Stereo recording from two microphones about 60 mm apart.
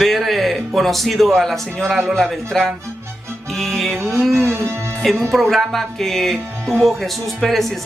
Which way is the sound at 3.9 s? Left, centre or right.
Right.